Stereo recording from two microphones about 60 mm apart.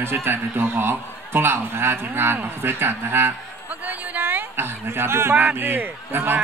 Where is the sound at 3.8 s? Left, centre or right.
Right.